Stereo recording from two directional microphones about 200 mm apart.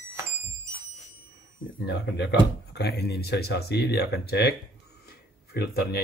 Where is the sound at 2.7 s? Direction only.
55° left (ahead or behind).